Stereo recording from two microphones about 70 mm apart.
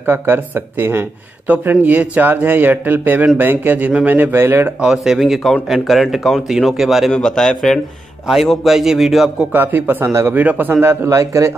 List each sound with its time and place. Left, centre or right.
0.0 s speech: right
4.8 s speech: centre
7.1 s a man's voice: centre
8.3 s speech: centre
9.5 s speech: right
10.8 s speech: right